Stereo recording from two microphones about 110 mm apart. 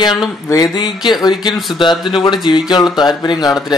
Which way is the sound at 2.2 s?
40° left (ahead or behind).